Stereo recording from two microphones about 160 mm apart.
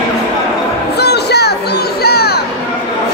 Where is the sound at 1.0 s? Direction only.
90° left.